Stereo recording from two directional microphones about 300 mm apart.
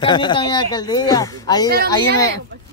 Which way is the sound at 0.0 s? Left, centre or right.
Centre.